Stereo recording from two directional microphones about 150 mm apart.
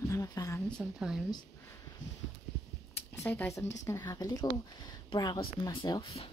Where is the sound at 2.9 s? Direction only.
15° left (ahead or behind).